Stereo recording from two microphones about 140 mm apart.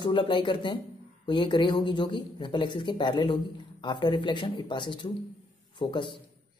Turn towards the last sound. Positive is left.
turn(degrees=35)  # may be behind; listen again after turning